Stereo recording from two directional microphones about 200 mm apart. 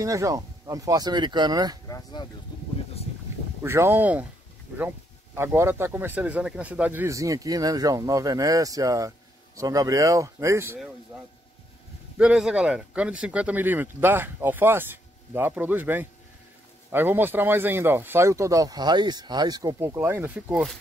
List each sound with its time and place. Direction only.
0.0 s speech: 15° right (ahead or behind)
1.9 s speech: 20° left (ahead or behind)
3.6 s speech: 10° right (ahead or behind)
12.2 s speech: 5° right (ahead or behind)